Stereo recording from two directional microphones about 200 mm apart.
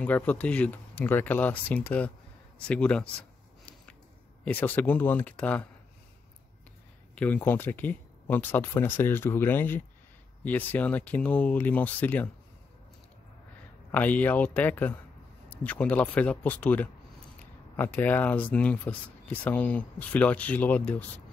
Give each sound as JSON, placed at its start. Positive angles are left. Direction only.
{"t": 0.0, "sound": "a man's voice", "side_deg": 10}
{"t": 4.5, "sound": "speech", "side_deg": 10}
{"t": 7.2, "sound": "speech", "side_deg": 10}
{"t": 13.9, "sound": "speech", "side_deg": 10}